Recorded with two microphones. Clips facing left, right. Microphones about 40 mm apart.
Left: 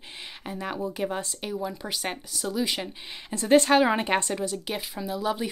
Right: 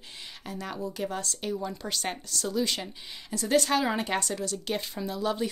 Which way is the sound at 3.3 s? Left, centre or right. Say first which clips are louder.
Left 6 dB; left.